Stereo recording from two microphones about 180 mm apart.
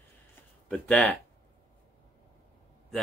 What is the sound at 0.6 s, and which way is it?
Speech, 5° left (ahead or behind).